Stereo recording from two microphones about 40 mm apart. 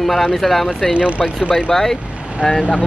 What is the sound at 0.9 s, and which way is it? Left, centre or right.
Speech, right.